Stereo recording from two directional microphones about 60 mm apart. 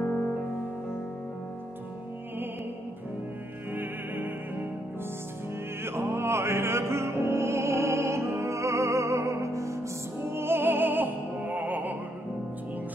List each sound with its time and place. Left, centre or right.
3.7 s music: right
5.9 s opera: right
10.3 s music: right